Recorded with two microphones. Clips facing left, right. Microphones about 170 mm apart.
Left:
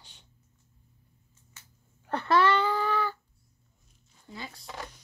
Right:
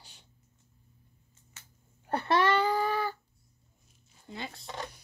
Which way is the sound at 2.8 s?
10° right (ahead or behind).